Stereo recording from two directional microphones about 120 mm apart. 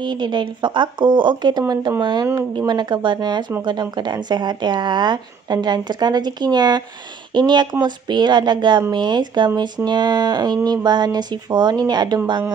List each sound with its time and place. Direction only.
0.0 s speech: 40° right (ahead or behind)